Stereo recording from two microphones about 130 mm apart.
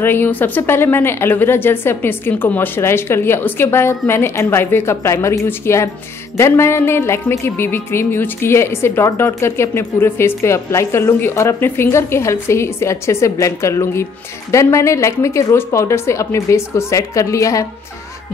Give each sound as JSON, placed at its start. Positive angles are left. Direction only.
{"t": 0.0, "sound": "a woman's voice", "side_deg": 15}
{"t": 6.3, "sound": "music", "side_deg": 20}